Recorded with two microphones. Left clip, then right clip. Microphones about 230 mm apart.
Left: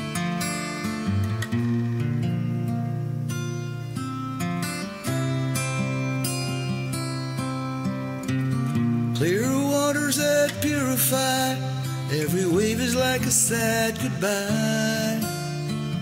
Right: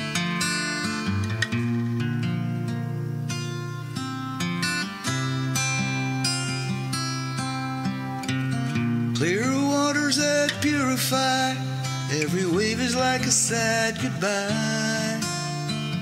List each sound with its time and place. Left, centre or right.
9.2 s music: left